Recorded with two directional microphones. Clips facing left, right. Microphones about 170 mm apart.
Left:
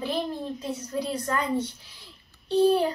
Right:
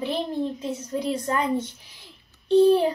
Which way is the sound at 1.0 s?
20° right (ahead or behind).